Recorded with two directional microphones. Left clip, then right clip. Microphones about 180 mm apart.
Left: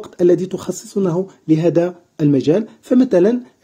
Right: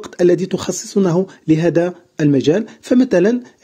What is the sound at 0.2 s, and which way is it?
Speech, 25° right (ahead or behind).